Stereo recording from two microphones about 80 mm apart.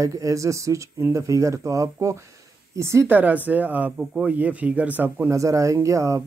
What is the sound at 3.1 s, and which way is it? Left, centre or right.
Speech, right.